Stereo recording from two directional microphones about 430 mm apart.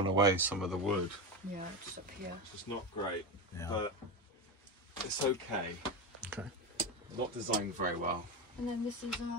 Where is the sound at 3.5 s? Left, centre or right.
Centre.